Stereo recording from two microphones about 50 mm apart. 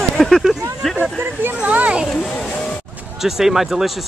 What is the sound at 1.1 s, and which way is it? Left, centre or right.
Speech, right.